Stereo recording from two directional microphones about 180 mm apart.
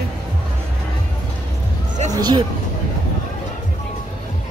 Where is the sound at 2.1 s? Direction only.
20° right (ahead or behind).